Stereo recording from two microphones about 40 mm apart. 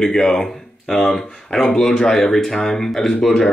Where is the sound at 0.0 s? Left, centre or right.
Centre.